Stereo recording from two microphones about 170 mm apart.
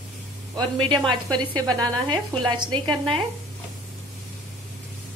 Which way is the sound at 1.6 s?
25° right (ahead or behind).